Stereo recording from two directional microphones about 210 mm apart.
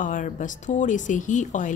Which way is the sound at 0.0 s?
40° left (ahead or behind).